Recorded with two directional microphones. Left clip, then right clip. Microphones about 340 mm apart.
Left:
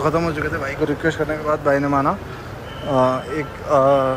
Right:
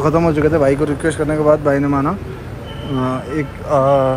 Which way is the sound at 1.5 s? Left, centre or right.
Right.